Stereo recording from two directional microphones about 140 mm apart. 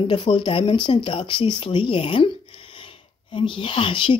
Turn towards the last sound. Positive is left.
turn(degrees=35)  # may be behind; listen again after turning